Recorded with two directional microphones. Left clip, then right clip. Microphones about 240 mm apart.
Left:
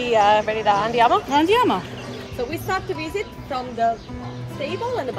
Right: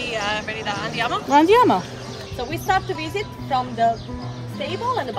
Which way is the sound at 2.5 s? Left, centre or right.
Right.